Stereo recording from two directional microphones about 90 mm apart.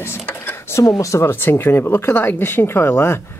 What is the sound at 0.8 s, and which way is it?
Speech, 35° left (ahead or behind).